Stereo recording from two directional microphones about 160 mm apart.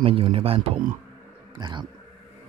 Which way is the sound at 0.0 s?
35° right (ahead or behind).